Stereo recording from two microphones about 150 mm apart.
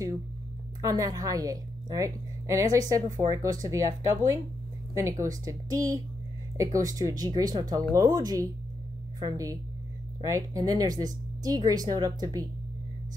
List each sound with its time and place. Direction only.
0.8 s a woman's voice: 20° right (ahead or behind)